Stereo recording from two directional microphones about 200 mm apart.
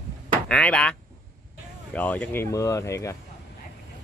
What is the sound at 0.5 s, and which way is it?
Speech, 5° left (ahead or behind).